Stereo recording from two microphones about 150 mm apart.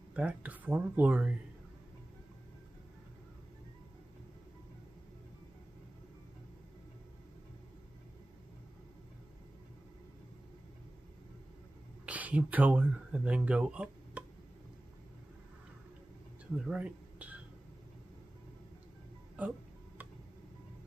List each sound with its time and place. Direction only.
0.1 s speech: 10° right (ahead or behind)
12.1 s speech: 10° right (ahead or behind)
16.5 s a sound: 5° right (ahead or behind)
19.4 s speech: 10° right (ahead or behind)